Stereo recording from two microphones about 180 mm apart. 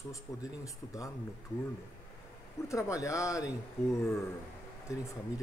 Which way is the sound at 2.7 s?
15° left (ahead or behind).